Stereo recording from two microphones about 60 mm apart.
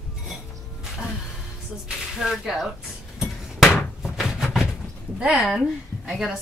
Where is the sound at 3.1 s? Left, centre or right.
Centre.